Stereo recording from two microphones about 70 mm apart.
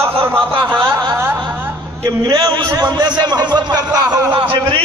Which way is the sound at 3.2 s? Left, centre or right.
Right.